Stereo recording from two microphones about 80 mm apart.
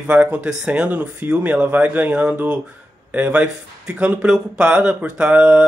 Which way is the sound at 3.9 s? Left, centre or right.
Centre.